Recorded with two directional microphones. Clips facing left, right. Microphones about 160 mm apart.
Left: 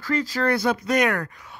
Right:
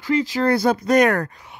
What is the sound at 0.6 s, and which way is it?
Speech, 40° right (ahead or behind).